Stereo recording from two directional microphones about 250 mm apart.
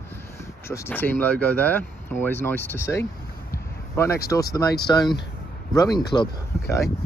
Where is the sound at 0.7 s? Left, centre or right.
Centre.